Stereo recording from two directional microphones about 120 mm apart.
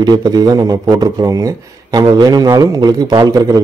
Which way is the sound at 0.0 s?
35° right (ahead or behind).